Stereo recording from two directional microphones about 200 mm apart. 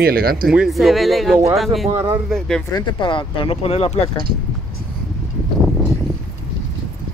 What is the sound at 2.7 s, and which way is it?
Speech, 20° left (ahead or behind).